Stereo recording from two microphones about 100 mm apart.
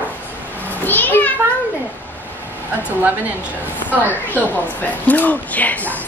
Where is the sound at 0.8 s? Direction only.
20° left (ahead or behind).